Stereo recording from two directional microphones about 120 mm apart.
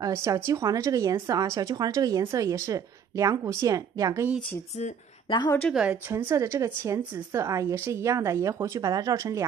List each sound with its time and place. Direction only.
0.0 s speech: 25° right (ahead or behind)
5.7 s a woman's voice: 10° right (ahead or behind)
6.1 s speech: 25° right (ahead or behind)